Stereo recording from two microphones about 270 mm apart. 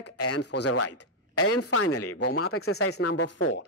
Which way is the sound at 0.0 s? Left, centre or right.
Left.